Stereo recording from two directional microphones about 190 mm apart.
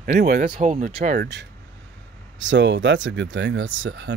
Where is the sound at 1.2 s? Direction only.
65° right (ahead or behind).